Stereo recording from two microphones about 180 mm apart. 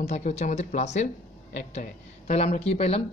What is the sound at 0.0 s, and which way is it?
Speech, 40° left (ahead or behind).